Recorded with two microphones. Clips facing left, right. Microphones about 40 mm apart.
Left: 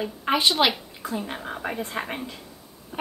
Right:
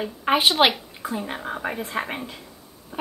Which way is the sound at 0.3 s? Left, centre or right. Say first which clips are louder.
Right 3 dB; right.